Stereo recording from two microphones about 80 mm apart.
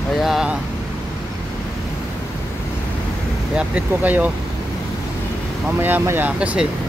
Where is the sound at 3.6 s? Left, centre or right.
Centre.